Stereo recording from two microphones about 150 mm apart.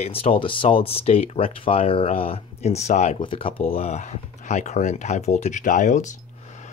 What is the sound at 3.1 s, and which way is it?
Speech, 35° left (ahead or behind).